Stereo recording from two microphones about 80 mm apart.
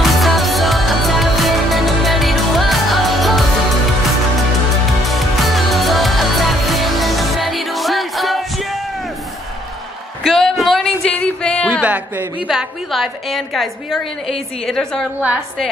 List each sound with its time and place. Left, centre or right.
0.0 s music: centre
5.0 s music: centre
10.2 s music: centre
11.1 s music: centre
12.4 s a woman's voice: centre
15.1 s a woman's voice: centre